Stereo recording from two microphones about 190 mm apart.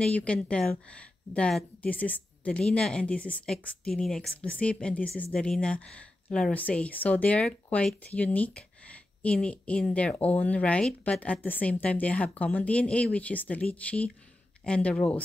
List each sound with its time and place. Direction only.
0.0 s speech: 5° left (ahead or behind)